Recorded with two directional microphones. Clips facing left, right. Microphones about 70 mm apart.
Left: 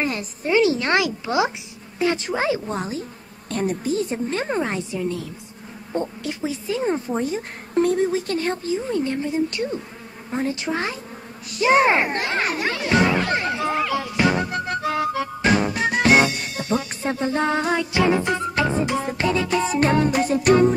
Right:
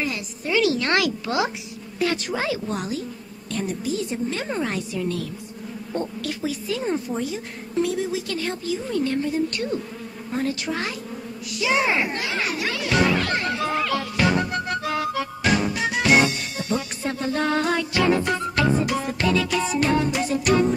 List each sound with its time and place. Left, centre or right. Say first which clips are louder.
0.0 s music: left 3 dB; left
3.4 s speech: left 4 dB; left
5.9 s music: left 2 dB; left
7.2 s speech: left 3 dB; left
10.3 s music: left 2 dB; left
11.5 s speech: left 5 dB; left
14.7 s music: left 2 dB; left
15.7 s music: left 2 dB; left
16.7 s music: left 3 dB; left